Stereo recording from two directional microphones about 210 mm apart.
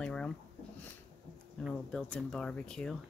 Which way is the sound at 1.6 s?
5° left (ahead or behind).